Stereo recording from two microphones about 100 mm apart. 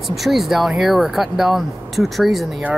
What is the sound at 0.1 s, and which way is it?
Speech, centre (ahead or behind).